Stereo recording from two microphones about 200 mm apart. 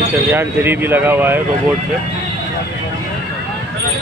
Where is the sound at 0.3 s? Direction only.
10° right (ahead or behind).